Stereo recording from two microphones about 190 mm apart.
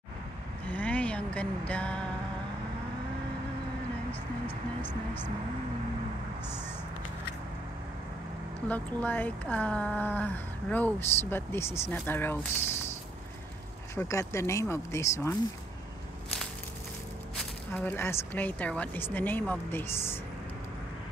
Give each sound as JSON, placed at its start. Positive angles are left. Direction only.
{"t": 0.7, "sound": "a sound", "side_deg": 10}
{"t": 1.7, "sound": "speech", "side_deg": 5}
{"t": 4.1, "sound": "speech", "side_deg": 30}
{"t": 8.6, "sound": "speech", "side_deg": 10}
{"t": 13.9, "sound": "speech", "side_deg": 15}
{"t": 17.4, "sound": "speech", "side_deg": 10}